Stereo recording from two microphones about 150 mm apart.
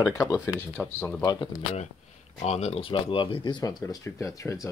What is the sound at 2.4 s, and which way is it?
Speech, 45° left (ahead or behind).